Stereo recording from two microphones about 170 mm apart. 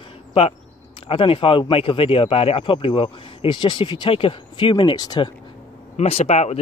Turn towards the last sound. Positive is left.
turn(degrees=40)  # may be behind; listen again after turning